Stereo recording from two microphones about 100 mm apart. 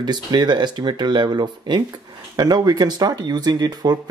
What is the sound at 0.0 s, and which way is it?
Speech, 45° right (ahead or behind).